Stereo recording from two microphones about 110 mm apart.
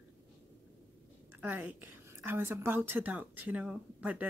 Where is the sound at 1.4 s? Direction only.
15° right (ahead or behind).